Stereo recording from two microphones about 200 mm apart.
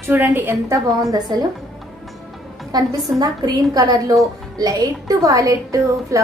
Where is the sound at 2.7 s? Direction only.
20° right (ahead or behind).